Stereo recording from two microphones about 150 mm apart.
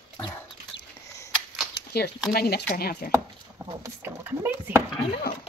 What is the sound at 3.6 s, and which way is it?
Rowboat, 20° right (ahead or behind).